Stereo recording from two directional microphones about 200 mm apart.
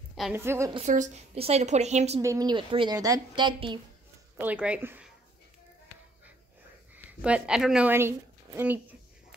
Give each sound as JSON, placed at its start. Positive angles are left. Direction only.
{"t": 0.1, "sound": "a sound", "side_deg": 0}
{"t": 0.4, "sound": "speech", "side_deg": -15}
{"t": 0.7, "sound": "a woman's voice", "side_deg": -35}
{"t": 2.2, "sound": "a woman's voice", "side_deg": -20}
{"t": 4.4, "sound": "speech", "side_deg": -5}
{"t": 7.1, "sound": "speech", "side_deg": -5}